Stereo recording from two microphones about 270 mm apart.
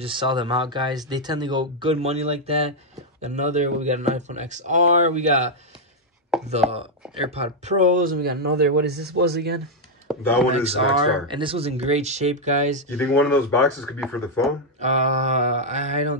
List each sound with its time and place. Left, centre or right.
0.0 s speech: centre
6.3 s chopping: centre
7.2 s a man's voice: right
10.1 s a sound: centre
10.5 s speech: right
12.9 s speech: centre
14.8 s speech: right